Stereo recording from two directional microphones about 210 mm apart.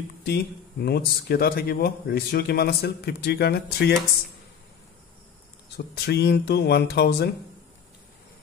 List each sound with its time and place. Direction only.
0.3 s speech: 50° left (ahead or behind)
5.9 s speech: 50° left (ahead or behind)